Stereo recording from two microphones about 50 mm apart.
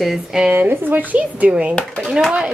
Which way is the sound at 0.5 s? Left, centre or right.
Right.